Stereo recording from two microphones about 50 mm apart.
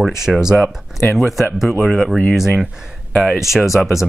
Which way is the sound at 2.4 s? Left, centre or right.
Centre.